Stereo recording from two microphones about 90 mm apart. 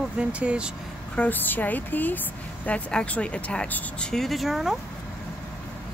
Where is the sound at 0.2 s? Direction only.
15° right (ahead or behind).